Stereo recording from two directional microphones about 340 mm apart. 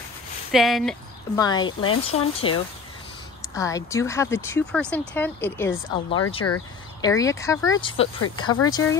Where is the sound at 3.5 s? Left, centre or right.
Centre.